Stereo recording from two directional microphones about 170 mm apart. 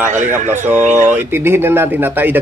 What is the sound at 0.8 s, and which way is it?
Speech, 45° right (ahead or behind).